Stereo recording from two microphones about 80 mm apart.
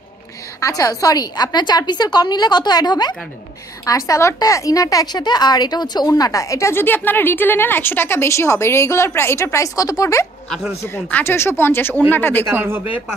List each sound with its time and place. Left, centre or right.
0.6 s a woman's voice: left
3.8 s a woman's voice: left
11.2 s speech: left
12.4 s speech: right